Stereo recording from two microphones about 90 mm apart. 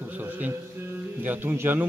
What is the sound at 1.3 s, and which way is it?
Speech, 20° right (ahead or behind).